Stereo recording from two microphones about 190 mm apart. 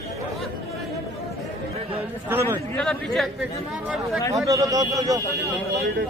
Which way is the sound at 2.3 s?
10° right (ahead or behind).